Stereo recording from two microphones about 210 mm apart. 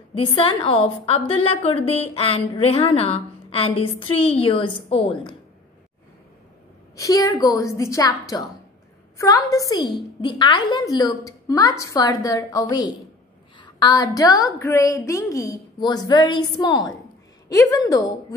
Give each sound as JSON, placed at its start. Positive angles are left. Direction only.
{"t": 0.1, "sound": "a woman's voice", "side_deg": 25}
{"t": 7.0, "sound": "a woman's voice", "side_deg": 15}